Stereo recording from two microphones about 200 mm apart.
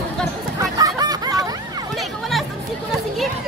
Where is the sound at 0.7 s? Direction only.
20° right (ahead or behind).